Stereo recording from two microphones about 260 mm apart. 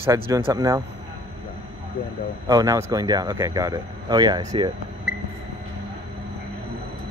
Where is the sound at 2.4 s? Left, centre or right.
Centre.